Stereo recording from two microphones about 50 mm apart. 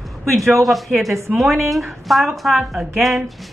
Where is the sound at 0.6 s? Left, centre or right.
Centre.